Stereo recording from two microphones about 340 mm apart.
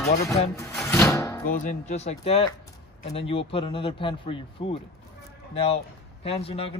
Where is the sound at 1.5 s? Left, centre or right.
Left.